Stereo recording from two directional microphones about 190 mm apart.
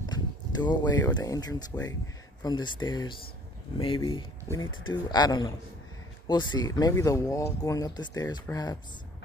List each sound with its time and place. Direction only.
0.6 s speech: 20° left (ahead or behind)